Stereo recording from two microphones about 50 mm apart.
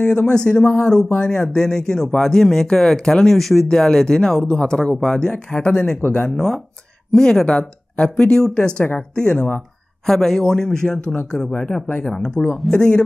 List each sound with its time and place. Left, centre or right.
0.0 s speech: centre
5.9 s speech: left
6.3 s speech: centre
7.4 s speech: left; by 12.8 s centre